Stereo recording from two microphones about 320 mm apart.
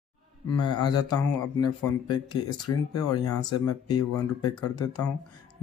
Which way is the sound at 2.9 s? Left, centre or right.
Centre.